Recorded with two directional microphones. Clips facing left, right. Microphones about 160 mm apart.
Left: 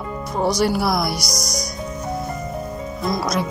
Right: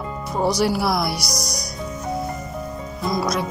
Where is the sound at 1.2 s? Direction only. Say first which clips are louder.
Left 2 dB; 60° right (ahead or behind).